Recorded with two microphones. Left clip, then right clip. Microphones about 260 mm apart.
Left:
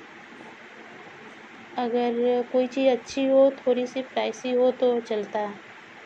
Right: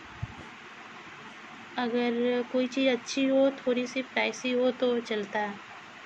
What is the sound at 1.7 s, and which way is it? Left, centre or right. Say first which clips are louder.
Speech: left 4 dB; centre.